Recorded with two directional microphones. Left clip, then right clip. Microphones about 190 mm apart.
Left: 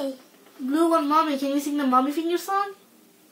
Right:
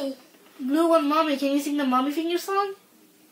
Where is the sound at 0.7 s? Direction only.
55° right (ahead or behind).